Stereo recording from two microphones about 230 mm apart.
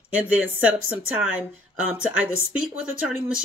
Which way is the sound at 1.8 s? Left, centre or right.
Centre.